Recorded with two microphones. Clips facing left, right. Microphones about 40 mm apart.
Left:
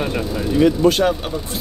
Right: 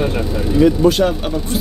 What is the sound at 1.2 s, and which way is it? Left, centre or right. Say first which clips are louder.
Speech: right 5 dB; centre.